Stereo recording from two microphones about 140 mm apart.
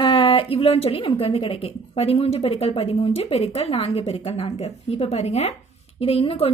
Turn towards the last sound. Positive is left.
turn(degrees=45)  # may be behind; listen again after turning